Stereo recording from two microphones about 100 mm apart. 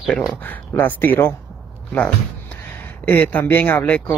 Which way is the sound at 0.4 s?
20° left (ahead or behind).